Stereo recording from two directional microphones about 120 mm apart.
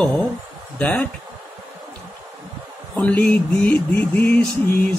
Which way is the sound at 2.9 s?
10° left (ahead or behind).